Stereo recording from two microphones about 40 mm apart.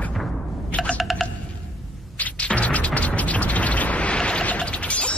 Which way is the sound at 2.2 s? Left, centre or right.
Left.